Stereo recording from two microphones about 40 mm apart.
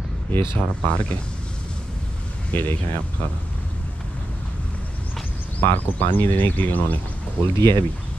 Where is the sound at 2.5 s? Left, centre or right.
Left.